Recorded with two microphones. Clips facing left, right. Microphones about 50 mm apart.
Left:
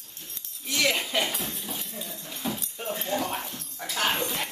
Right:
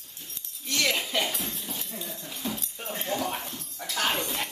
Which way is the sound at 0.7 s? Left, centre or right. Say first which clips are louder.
Left 1 dB; centre.